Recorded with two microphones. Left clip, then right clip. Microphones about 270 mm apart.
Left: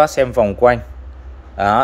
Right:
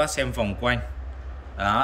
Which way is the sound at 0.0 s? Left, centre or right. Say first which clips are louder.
Left 11 dB; centre.